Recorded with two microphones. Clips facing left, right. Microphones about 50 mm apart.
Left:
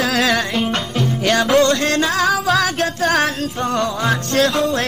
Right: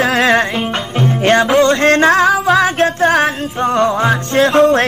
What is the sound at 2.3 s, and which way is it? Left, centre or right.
Music, centre.